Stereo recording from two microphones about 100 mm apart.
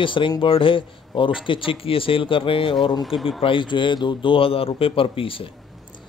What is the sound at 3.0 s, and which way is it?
Speech, centre (ahead or behind).